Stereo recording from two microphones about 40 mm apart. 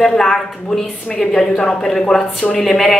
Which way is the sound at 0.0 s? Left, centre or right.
Centre.